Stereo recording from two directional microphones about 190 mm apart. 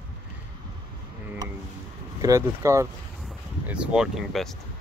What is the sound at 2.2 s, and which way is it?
Speech, 15° right (ahead or behind).